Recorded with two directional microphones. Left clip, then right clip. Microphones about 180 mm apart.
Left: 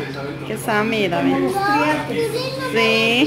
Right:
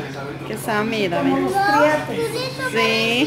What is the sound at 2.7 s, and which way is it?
Speech, centre (ahead or behind).